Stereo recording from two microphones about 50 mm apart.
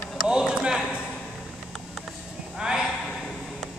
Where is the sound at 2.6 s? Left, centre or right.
Centre.